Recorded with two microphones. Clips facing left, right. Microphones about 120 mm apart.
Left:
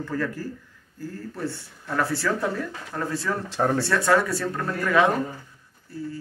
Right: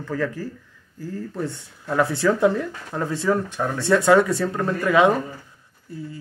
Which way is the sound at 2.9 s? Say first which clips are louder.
Right 6 dB; 25° right (ahead or behind).